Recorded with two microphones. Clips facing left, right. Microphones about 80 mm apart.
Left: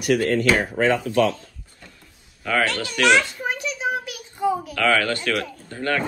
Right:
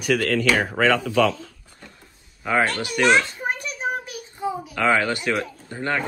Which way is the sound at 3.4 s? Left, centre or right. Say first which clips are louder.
Left 1 dB; right.